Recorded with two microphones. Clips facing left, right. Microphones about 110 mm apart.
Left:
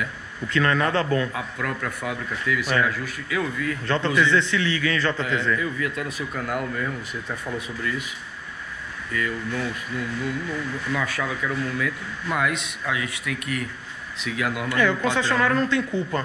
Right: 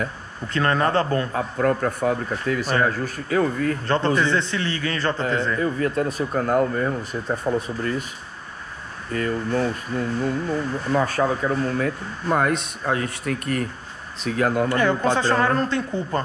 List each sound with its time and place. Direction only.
0.0 s a man's voice: 40° right (ahead or behind)
9.1 s a man's voice: 40° right (ahead or behind)